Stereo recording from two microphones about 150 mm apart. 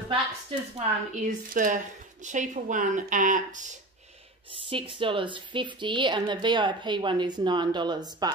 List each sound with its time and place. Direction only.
0.7 s speech: 65° right (ahead or behind)
4.6 s a woman's voice: 35° right (ahead or behind)